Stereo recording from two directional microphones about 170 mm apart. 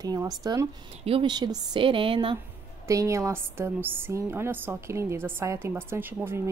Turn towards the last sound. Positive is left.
turn(degrees=-15)  # may be behind; listen again after turning